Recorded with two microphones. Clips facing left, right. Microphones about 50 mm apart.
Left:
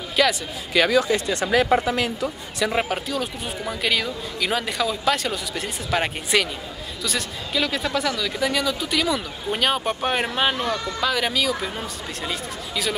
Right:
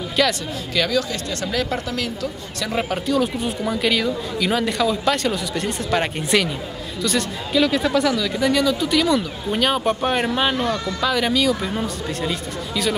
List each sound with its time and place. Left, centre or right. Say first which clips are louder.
0.1 s a sound: even; centre
0.7 s speech: left 3 dB; left
3.1 s speech: right 7 dB; centre